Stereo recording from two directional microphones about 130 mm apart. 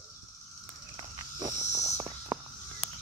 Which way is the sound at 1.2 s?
30° right (ahead or behind).